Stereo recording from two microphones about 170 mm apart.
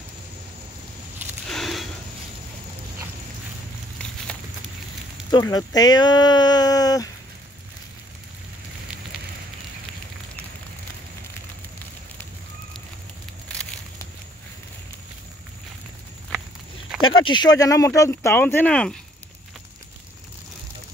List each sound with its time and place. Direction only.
1.5 s a sound: centre (ahead or behind)
5.4 s speech: 20° left (ahead or behind)
17.1 s speech: 30° left (ahead or behind); by 18.9 s 5° left (ahead or behind)